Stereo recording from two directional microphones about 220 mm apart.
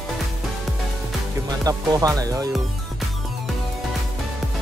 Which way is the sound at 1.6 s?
15° right (ahead or behind).